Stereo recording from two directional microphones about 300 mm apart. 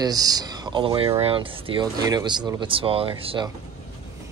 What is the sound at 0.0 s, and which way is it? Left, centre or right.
Speech, centre.